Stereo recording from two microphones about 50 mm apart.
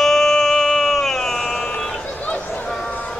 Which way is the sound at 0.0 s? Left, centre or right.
Centre.